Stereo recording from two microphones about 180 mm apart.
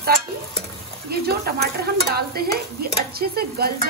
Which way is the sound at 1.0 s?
60° right (ahead or behind).